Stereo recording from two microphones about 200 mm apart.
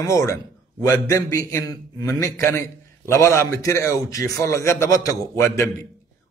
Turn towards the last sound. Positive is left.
turn(degrees=15)  # may be behind; listen again after turning